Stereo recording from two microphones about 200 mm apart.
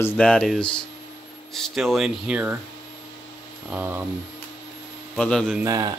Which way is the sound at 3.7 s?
10° right (ahead or behind).